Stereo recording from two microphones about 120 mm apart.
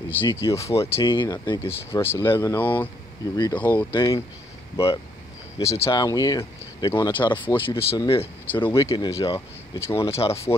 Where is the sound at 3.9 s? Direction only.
40° left (ahead or behind).